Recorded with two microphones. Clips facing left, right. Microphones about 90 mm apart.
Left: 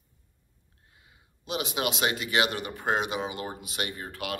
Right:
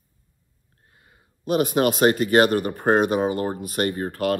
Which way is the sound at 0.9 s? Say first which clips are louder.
Right 3 dB; 50° right (ahead or behind).